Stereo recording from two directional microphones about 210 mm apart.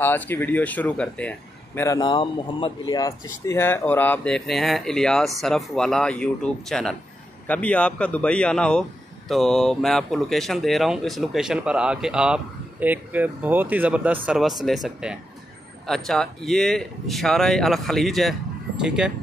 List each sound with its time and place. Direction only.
0.0 s speech: 10° left (ahead or behind)
1.8 s speech: 15° left (ahead or behind); by 19.1 s 5° right (ahead or behind)